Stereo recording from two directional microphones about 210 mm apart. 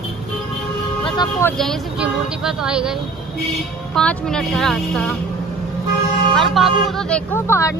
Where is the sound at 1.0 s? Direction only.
20° left (ahead or behind).